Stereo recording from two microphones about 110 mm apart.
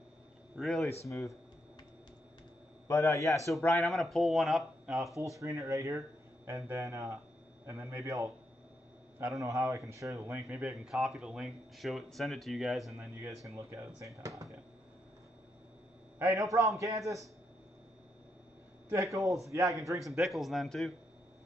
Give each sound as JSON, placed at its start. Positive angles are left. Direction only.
{"t": 0.6, "sound": "speech", "side_deg": 0}
{"t": 1.0, "sound": "a man's voice", "side_deg": 30}
{"t": 2.9, "sound": "a man's voice", "side_deg": 30}
{"t": 3.8, "sound": "speech", "side_deg": 0}
{"t": 5.1, "sound": "speech", "side_deg": -30}
{"t": 9.4, "sound": "speech", "side_deg": -30}
{"t": 10.6, "sound": "speech", "side_deg": -5}
{"t": 13.0, "sound": "speech", "side_deg": -25}
{"t": 16.2, "sound": "speech", "side_deg": -30}
{"t": 19.1, "sound": "speech", "side_deg": -30}
{"t": 20.2, "sound": "speech", "side_deg": 0}